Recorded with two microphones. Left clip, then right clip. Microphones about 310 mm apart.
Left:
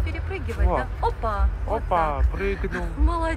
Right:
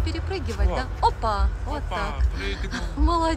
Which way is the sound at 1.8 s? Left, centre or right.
Centre.